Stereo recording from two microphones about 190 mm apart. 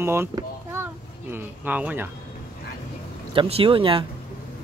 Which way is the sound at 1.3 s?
10° right (ahead or behind).